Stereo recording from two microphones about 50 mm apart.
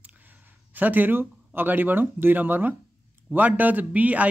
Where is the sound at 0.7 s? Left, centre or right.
Right.